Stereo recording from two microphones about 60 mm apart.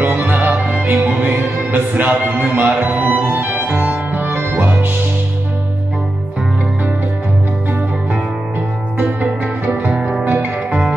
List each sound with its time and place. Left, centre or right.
0.0 s music: right
8.9 s music: right